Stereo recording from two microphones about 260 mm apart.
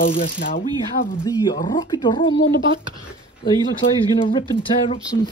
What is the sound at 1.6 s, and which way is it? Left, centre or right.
Speech, centre.